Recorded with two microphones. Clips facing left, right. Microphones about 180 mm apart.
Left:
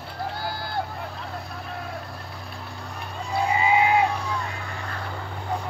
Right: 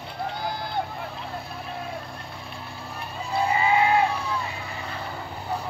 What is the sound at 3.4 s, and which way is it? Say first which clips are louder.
Sheep: even; 15° left (ahead or behind).